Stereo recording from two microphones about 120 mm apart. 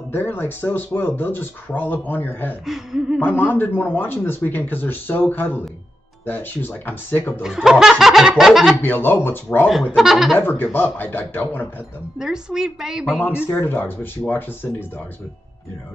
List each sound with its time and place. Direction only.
0.1 s speech: 15° left (ahead or behind)
2.6 s speech: centre (ahead or behind)
3.2 s speech: 15° left (ahead or behind)
7.4 s speech: 5° right (ahead or behind)
8.8 s speech: 15° left (ahead or behind)
9.7 s speech: 5° right (ahead or behind)
10.4 s speech: 15° left (ahead or behind)
12.2 s speech: 5° right (ahead or behind)
13.2 s speech: 20° left (ahead or behind)